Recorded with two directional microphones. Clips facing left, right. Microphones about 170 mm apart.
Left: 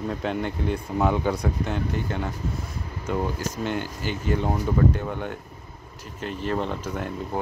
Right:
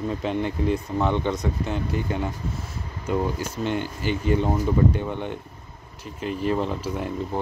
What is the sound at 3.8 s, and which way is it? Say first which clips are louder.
Speech: right 3 dB; 45° left (ahead or behind).